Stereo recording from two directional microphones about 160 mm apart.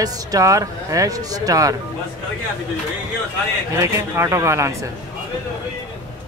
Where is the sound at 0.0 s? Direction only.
25° right (ahead or behind).